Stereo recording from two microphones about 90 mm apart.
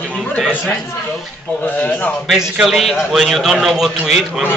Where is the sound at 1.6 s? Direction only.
20° left (ahead or behind).